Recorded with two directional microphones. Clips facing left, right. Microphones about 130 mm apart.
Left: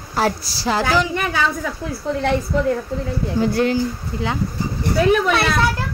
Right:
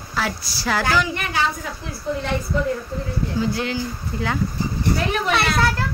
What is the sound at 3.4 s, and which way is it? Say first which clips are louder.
Speech: left 6 dB; 55° left (ahead or behind).